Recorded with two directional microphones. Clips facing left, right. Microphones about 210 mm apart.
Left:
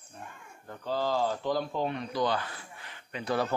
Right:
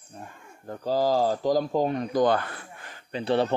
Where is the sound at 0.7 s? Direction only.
40° right (ahead or behind).